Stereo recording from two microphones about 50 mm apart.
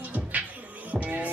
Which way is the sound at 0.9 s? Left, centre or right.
Right.